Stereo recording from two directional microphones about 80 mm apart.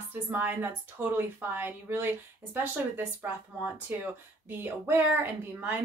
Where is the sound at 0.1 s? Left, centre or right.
Right.